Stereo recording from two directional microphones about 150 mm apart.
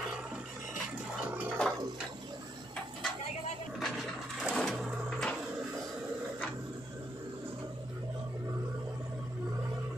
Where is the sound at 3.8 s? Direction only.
Centre (ahead or behind).